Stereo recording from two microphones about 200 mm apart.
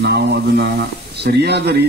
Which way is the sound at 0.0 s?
55° right (ahead or behind).